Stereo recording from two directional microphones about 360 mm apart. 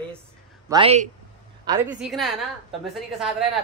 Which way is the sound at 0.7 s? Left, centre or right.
Centre.